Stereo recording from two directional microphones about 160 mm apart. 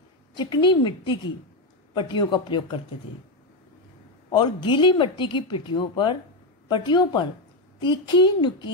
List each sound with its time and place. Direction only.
0.4 s a woman's voice: 30° left (ahead or behind)
4.3 s a woman's voice: 30° left (ahead or behind)